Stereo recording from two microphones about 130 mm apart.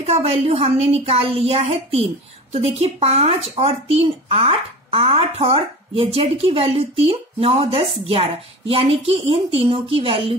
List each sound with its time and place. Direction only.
0.0 s speech: 55° right (ahead or behind)